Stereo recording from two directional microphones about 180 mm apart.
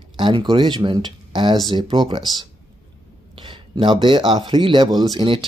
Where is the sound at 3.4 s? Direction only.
25° right (ahead or behind).